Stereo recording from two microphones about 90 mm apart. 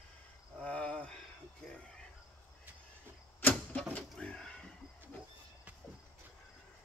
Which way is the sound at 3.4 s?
20° left (ahead or behind).